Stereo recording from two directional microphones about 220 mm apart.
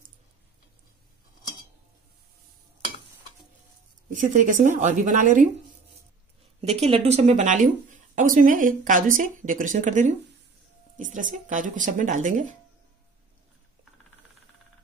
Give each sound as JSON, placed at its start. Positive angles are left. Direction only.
{"t": 4.1, "sound": "speech", "side_deg": -35}
{"t": 6.7, "sound": "speech", "side_deg": -30}